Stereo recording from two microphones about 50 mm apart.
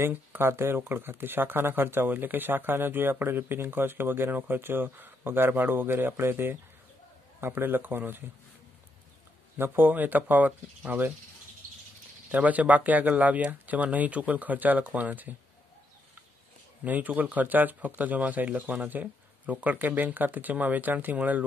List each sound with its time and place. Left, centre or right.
0.1 s speech: right
9.6 s speech: right
12.3 s speech: right
16.8 s speech: right